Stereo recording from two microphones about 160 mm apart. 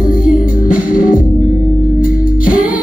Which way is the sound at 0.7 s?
60° left (ahead or behind).